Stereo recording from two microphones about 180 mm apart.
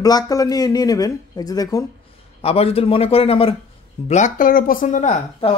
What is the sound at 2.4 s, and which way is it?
Speech, 35° left (ahead or behind).